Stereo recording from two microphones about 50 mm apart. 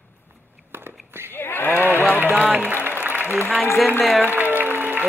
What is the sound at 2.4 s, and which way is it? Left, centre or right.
Applause, right.